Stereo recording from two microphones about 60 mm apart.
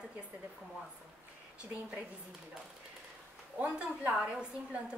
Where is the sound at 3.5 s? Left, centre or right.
Centre.